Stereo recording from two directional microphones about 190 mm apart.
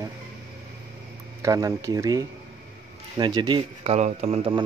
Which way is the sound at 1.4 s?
15° right (ahead or behind).